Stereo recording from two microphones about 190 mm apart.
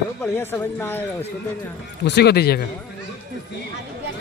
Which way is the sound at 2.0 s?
60° left (ahead or behind).